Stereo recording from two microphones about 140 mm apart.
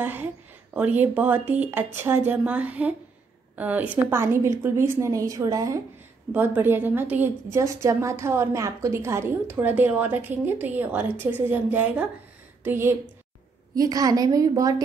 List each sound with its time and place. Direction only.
0.0 s a woman's voice: 15° right (ahead or behind)
6.3 s a woman's voice: 15° right (ahead or behind)